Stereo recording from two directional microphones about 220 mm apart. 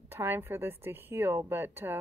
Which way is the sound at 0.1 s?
10° right (ahead or behind).